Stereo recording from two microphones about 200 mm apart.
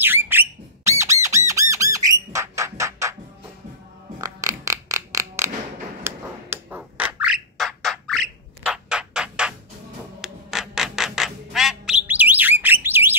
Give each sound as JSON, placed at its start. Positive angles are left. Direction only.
{"t": 0.0, "sound": "bird", "side_deg": -10}
{"t": 1.2, "sound": "squawk", "side_deg": -15}
{"t": 4.2, "sound": "a sound", "side_deg": -15}
{"t": 10.2, "sound": "squawk", "side_deg": 0}